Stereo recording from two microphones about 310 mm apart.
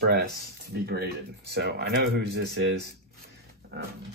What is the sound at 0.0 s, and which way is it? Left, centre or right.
Speech, right.